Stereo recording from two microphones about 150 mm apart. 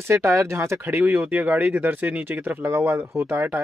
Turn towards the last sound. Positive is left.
turn(degrees=-15)  # may be behind; listen again after turning